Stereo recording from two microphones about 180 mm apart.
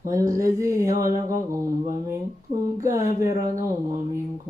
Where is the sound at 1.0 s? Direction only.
50° right (ahead or behind).